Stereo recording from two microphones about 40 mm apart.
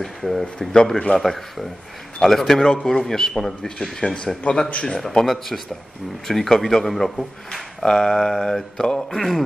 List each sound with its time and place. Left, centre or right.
0.0 s speech: centre
0.6 s a man's voice: centre
1.1 s a man's voice: centre
4.0 s a man's voice: left; by 7.6 s centre
7.8 s a man's voice: centre